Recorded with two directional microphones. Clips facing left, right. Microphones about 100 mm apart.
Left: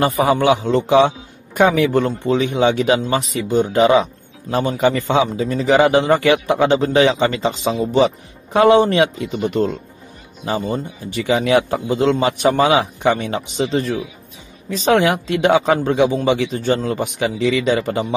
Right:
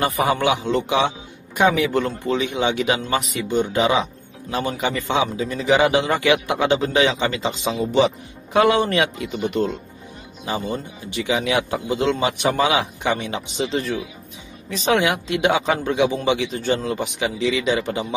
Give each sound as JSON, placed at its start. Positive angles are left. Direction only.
{"t": 0.0, "sound": "a man's voice", "side_deg": 30}
{"t": 15.0, "sound": "a man's voice", "side_deg": 40}